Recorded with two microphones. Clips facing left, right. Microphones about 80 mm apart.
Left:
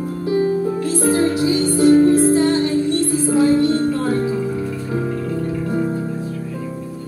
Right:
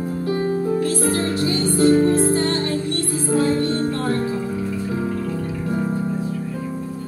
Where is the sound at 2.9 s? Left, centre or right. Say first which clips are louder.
Left 4 dB; centre.